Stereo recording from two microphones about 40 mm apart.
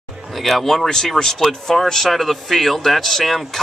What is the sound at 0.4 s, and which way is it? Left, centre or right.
A man's voice, centre.